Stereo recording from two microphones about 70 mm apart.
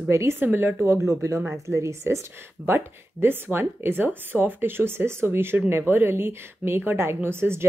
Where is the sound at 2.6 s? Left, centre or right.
Right.